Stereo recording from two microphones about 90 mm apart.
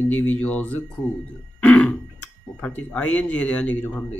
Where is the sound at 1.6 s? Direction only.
15° left (ahead or behind).